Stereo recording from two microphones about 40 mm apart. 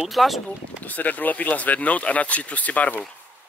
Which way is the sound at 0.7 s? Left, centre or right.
Left.